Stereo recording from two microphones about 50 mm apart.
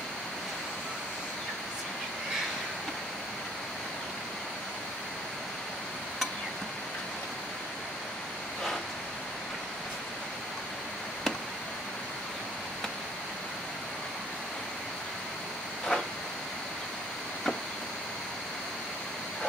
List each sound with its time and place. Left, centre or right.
15.9 s vehicle: centre